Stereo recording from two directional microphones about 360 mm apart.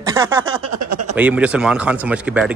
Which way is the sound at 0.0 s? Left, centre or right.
Centre.